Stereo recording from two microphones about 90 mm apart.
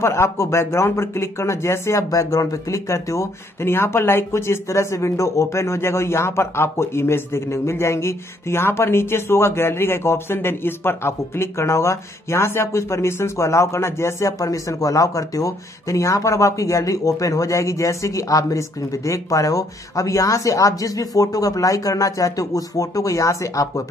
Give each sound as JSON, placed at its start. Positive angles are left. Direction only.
{"t": 0.0, "sound": "speech", "side_deg": 30}